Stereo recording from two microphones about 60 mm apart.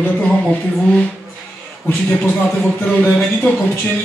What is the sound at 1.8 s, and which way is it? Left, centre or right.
Speech, left.